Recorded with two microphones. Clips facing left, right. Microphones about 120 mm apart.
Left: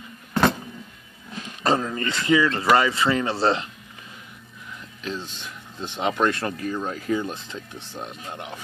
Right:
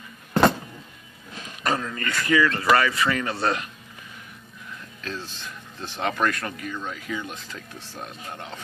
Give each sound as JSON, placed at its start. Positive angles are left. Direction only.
{"t": 1.6, "sound": "speech", "side_deg": 30}
{"t": 5.0, "sound": "speech", "side_deg": 15}
{"t": 7.4, "sound": "speech", "side_deg": 25}